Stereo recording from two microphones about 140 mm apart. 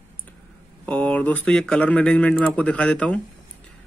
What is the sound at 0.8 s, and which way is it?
Speech, 10° left (ahead or behind).